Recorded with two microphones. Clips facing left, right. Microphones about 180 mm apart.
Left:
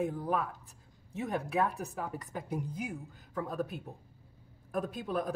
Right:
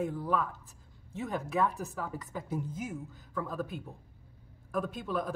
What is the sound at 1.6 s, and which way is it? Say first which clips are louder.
Speech: right 3 dB; 35° left (ahead or behind).